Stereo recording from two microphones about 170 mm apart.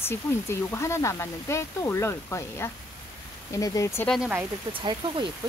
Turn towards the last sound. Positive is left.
turn(degrees=-25)  # may be behind; listen again after turning